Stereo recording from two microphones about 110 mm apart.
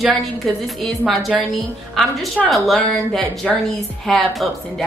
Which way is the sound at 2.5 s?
Centre (ahead or behind).